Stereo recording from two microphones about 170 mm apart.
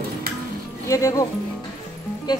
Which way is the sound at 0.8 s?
20° left (ahead or behind).